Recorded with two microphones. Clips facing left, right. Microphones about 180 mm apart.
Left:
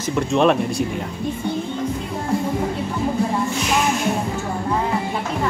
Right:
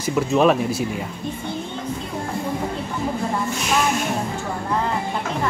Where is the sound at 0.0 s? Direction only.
5° right (ahead or behind).